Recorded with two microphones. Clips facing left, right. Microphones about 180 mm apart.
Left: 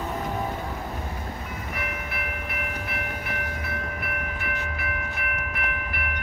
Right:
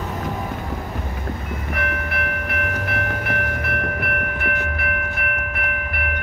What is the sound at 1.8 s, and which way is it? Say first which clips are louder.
Train: right 8 dB; 65° right (ahead or behind).